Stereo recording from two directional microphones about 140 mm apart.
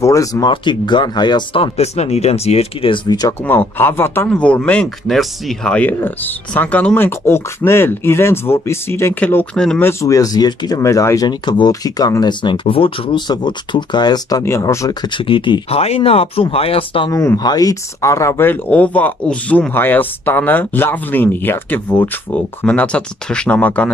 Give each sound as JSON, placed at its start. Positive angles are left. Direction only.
{"t": 0.0, "sound": "speech", "side_deg": 25}
{"t": 3.1, "sound": "speech", "side_deg": 25}
{"t": 3.4, "sound": "speech", "side_deg": 15}
{"t": 9.8, "sound": "speech", "side_deg": 20}
{"t": 14.4, "sound": "speech", "side_deg": 20}
{"t": 17.1, "sound": "speech", "side_deg": 20}